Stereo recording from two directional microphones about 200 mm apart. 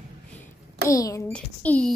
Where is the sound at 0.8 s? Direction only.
15° left (ahead or behind).